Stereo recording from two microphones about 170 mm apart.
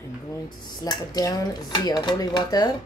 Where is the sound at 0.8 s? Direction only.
25° left (ahead or behind).